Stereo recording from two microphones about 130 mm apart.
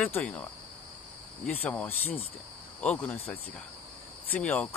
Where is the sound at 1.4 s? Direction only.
10° left (ahead or behind).